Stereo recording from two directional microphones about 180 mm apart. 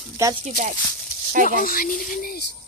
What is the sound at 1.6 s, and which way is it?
Speech, 50° left (ahead or behind).